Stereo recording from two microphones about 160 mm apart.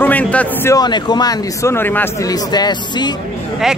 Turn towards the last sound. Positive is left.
turn(degrees=25)  # may be behind; listen again after turning